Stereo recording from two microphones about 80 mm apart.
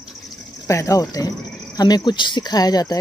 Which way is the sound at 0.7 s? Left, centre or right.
Left.